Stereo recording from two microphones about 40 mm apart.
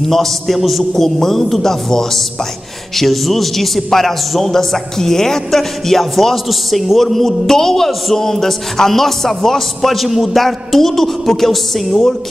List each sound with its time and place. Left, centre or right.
0.0 s a man's voice: centre